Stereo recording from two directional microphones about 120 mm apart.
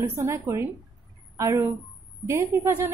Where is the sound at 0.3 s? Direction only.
20° right (ahead or behind).